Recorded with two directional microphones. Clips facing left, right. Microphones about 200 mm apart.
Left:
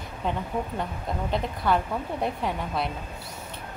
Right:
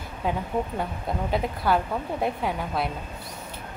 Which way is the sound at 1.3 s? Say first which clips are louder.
Right 1 dB; 5° right (ahead or behind).